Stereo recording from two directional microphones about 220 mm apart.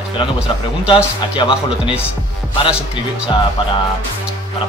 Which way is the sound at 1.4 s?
20° left (ahead or behind).